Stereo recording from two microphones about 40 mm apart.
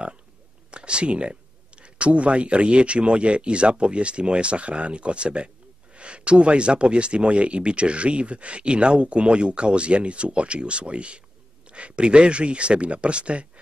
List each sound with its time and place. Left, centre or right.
0.7 s speech: right